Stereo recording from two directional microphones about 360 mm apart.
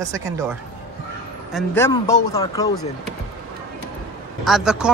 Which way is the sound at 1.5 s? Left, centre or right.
Centre.